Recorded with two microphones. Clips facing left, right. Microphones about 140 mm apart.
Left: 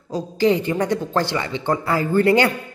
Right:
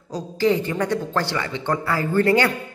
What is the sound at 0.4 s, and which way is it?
Speech, 15° left (ahead or behind).